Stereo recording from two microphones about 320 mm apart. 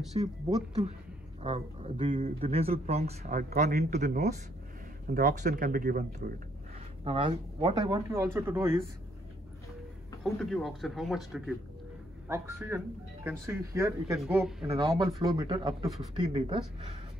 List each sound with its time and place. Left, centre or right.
0.2 s speech: centre
1.4 s speech: centre
7.1 s speech: centre
10.2 s speech: centre
14.9 s speech: centre